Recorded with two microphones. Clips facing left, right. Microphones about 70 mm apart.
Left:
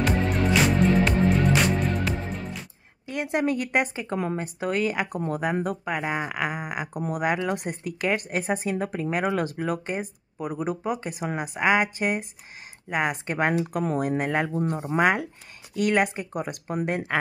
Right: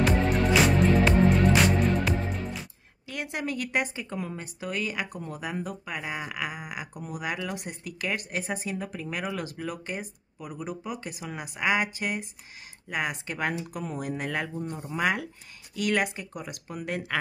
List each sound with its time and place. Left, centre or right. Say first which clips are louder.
0.0 s music: even; centre
3.1 s speech: left 7 dB; left
4.2 s speech: left 7 dB; left
14.5 s speech: left 8 dB; left
15.0 s speech: left 5 dB; left
16.8 s speech: left 4 dB; left